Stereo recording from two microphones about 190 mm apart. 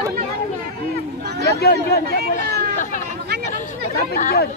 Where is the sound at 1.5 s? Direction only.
55° left (ahead or behind).